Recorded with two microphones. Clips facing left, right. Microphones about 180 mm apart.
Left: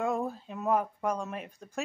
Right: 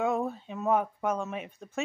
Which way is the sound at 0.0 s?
Centre (ahead or behind).